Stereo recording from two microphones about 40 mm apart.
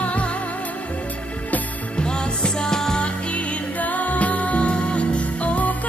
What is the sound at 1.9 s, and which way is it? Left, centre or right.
Music, left.